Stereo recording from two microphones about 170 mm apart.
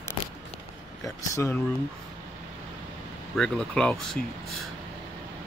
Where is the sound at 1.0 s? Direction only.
15° left (ahead or behind).